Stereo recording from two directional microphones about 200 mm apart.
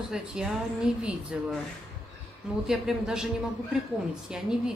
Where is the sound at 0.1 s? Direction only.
5° right (ahead or behind).